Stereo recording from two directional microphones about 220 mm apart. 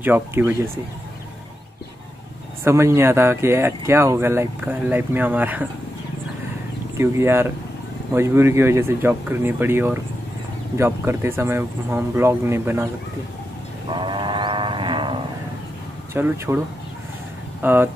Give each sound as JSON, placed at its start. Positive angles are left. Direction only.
{"t": 0.0, "sound": "speech", "side_deg": -10}
{"t": 2.6, "sound": "speech", "side_deg": -10}
{"t": 7.0, "sound": "speech", "side_deg": -10}
{"t": 13.9, "sound": "sheep", "side_deg": -20}
{"t": 16.1, "sound": "speech", "side_deg": -10}
{"t": 17.6, "sound": "speech", "side_deg": -10}